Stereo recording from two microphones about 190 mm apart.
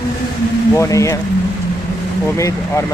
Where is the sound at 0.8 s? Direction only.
15° left (ahead or behind).